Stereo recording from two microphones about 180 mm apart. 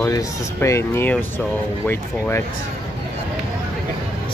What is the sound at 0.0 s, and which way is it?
Speech, 15° left (ahead or behind).